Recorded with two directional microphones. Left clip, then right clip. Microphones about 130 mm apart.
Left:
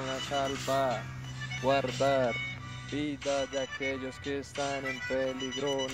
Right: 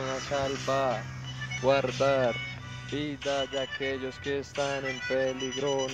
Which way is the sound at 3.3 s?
40° left (ahead or behind).